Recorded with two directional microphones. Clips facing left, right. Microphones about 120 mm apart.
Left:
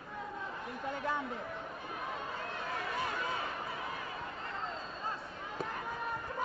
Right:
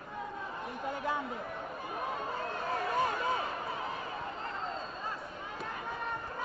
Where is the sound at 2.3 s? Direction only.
40° right (ahead or behind).